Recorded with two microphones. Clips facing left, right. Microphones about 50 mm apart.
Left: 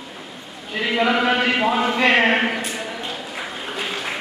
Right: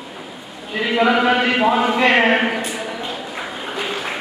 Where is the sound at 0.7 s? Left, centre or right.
Centre.